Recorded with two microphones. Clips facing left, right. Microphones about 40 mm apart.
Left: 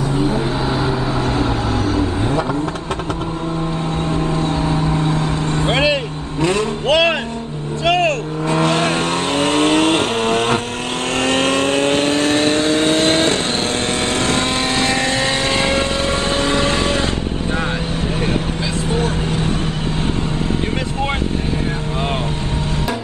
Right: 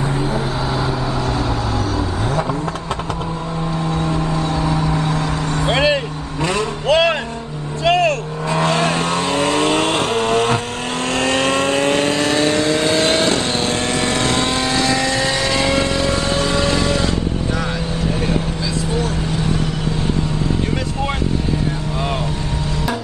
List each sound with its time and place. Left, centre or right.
0.2 s vehicle: left
1.3 s vehicle: left
4.0 s vehicle: left
6.9 s vehicle: left
18.9 s vehicle: left